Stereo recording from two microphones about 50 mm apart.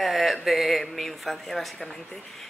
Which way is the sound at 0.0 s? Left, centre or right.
Centre.